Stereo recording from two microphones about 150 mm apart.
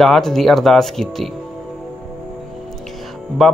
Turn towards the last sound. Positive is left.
turn(degrees=0)  # may be behind; listen again after turning